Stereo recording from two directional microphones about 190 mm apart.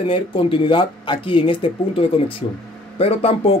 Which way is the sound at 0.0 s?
30° left (ahead or behind).